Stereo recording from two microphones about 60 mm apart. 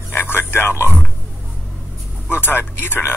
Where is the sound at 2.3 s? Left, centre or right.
Left.